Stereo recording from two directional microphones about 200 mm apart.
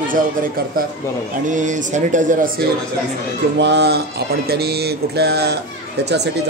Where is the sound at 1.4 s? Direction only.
40° right (ahead or behind).